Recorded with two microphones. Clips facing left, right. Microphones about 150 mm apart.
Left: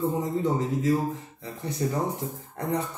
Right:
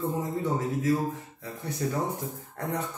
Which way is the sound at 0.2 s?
15° left (ahead or behind).